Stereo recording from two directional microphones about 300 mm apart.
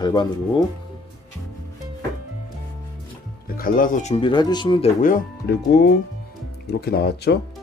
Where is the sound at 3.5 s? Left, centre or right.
Left.